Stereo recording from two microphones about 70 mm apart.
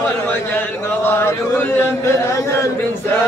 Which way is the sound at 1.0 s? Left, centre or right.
Left.